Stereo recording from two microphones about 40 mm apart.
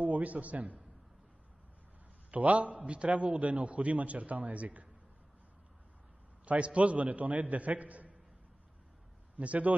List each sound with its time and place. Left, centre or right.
0.0 s a man's voice: right
2.3 s a man's voice: right
6.4 s a man's voice: right
9.4 s a man's voice: right